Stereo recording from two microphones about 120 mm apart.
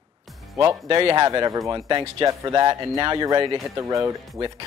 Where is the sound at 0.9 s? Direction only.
35° right (ahead or behind).